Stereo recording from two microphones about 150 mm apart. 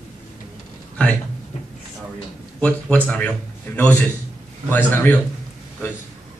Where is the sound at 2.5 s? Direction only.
10° left (ahead or behind).